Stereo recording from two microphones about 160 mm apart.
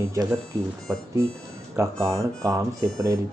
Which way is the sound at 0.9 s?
20° right (ahead or behind).